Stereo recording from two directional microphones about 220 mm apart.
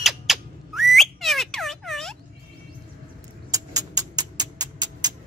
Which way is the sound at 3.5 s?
15° right (ahead or behind).